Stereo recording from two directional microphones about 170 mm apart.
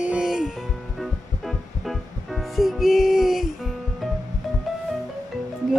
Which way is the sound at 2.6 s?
Centre (ahead or behind).